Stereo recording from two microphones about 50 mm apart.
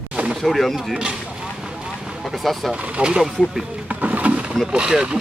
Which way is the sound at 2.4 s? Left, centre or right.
Centre.